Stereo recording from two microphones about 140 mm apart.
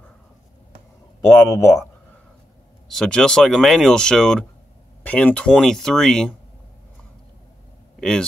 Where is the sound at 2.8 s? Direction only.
5° left (ahead or behind).